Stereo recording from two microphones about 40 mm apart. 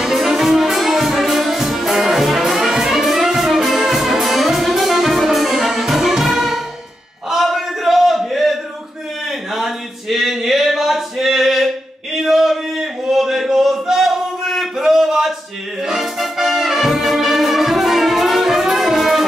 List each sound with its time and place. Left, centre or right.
0.0 s music: centre
7.2 s a sound: centre
15.8 s music: centre